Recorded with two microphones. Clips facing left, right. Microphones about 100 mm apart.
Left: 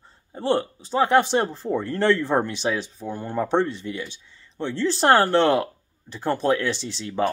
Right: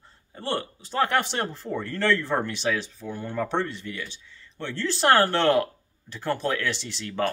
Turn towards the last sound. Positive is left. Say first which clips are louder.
# left 3 dB
turn(degrees=20)  # may be behind; listen again after turning